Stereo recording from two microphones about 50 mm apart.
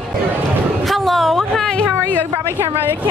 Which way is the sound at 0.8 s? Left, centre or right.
Centre.